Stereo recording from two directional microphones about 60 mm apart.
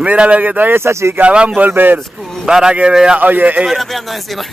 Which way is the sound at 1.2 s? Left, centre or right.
Right.